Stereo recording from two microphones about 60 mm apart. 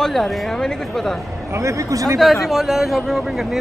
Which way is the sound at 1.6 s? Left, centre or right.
Right.